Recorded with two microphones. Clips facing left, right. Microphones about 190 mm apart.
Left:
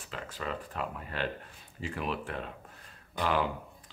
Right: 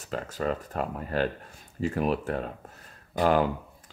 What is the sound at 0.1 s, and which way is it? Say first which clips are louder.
Speech: right 8 dB; 45° right (ahead or behind).